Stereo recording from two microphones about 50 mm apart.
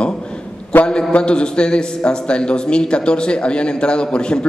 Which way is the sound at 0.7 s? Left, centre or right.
Left.